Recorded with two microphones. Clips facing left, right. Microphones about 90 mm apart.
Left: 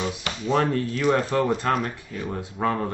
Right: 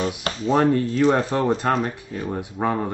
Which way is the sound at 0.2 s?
35° right (ahead or behind).